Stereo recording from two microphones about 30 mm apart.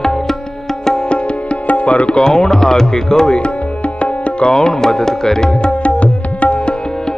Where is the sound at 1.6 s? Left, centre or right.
Left.